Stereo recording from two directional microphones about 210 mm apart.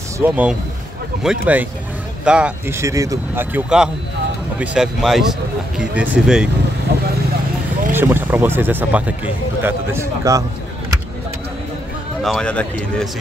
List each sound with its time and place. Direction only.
0.2 s speech: 5° right (ahead or behind)
6.9 s vehicle: 50° right (ahead or behind)
7.9 s speech: 10° right (ahead or behind)
12.2 s speech: centre (ahead or behind)